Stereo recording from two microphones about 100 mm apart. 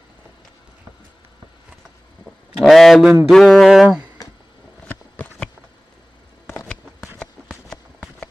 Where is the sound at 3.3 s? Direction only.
Centre (ahead or behind).